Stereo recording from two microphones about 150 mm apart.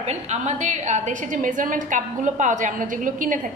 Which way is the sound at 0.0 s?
50° right (ahead or behind).